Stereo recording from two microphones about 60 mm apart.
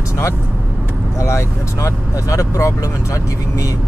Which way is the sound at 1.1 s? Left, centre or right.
Left.